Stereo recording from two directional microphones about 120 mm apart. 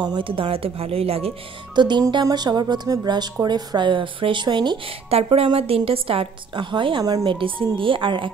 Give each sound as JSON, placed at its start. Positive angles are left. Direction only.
{"t": 0.0, "sound": "a woman's voice", "side_deg": -40}
{"t": 1.8, "sound": "speech", "side_deg": -40}
{"t": 5.1, "sound": "a woman's voice", "side_deg": -55}
{"t": 7.3, "sound": "a woman's voice", "side_deg": -45}